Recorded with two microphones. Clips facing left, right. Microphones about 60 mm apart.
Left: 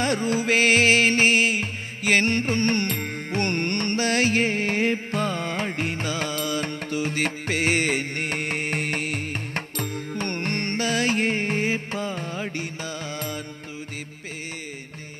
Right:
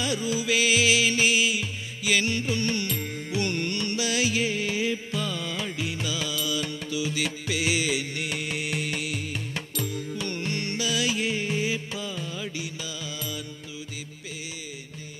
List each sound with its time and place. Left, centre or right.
0.0 s music: left